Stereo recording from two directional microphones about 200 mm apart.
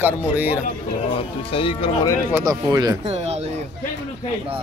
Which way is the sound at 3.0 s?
30° right (ahead or behind).